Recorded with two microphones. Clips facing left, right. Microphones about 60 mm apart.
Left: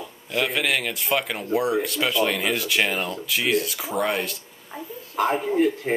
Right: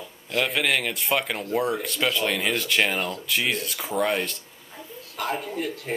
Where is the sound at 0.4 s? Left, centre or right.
Centre.